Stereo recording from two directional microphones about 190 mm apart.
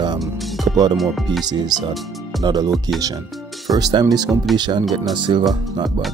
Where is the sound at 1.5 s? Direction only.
20° right (ahead or behind).